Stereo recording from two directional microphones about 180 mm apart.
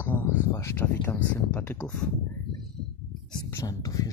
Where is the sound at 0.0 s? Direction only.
10° left (ahead or behind).